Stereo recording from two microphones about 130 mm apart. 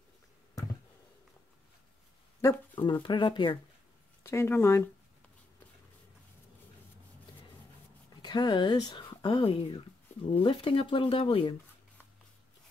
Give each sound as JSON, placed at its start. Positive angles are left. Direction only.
{"t": 2.7, "sound": "speech", "side_deg": 35}
{"t": 4.2, "sound": "speech", "side_deg": 20}
{"t": 8.2, "sound": "speech", "side_deg": 35}